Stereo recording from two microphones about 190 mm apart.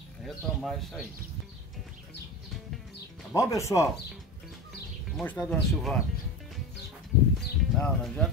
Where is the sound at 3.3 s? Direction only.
15° left (ahead or behind).